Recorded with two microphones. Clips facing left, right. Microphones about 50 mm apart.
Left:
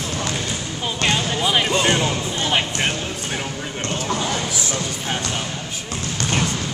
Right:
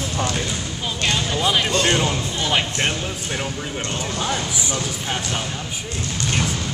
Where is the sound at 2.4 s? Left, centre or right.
Centre.